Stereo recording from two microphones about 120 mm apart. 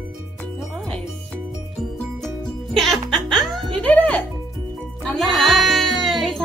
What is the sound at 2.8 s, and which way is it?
Music, centre (ahead or behind).